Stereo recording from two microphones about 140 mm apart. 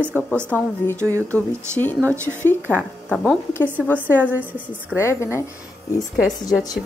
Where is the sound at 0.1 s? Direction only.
15° left (ahead or behind).